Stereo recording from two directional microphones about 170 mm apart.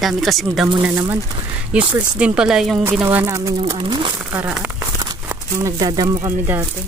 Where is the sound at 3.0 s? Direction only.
15° right (ahead or behind); by 4.1 s 30° right (ahead or behind).